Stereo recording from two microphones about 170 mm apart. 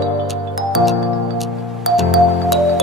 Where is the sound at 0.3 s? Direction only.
Centre (ahead or behind).